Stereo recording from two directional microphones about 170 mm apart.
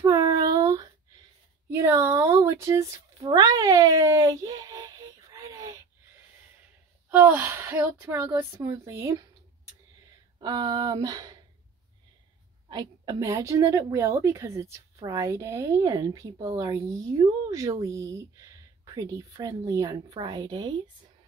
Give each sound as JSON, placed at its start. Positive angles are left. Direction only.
{"t": 0.0, "sound": "a sound", "side_deg": -20}
{"t": 7.1, "sound": "a woman's voice", "side_deg": -10}
{"t": 10.4, "sound": "speech", "side_deg": -25}
{"t": 12.6, "sound": "a woman's voice", "side_deg": -25}